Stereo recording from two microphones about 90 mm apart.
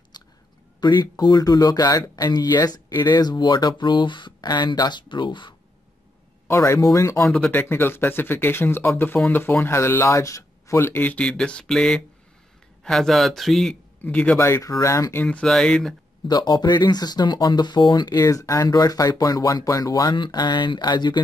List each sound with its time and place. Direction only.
0.1 s whispering: 50° left (ahead or behind)
0.7 s speech: 50° left (ahead or behind)
6.4 s speech: 35° left (ahead or behind)
7.5 s speech: 25° left (ahead or behind); by 13.7 s centre (ahead or behind)
14.0 s speech: 15° left (ahead or behind)
14.4 s speech: 35° left (ahead or behind)
15.2 s speech: 5° left (ahead or behind)
16.3 s speech: 50° left (ahead or behind)